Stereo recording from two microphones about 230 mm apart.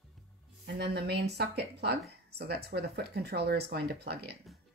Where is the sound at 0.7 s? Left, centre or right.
Right.